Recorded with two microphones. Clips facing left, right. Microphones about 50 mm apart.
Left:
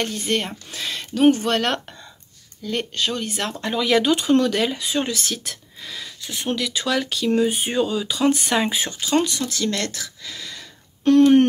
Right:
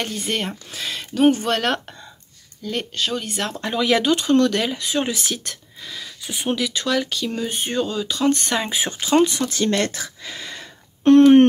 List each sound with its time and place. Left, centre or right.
0.0 s speech: centre
5.4 s speech: centre
6.2 s speech: centre
6.7 s speech: centre
9.1 s speech: right